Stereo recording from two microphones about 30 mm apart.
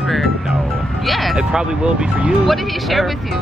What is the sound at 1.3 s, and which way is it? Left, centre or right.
Speech, right.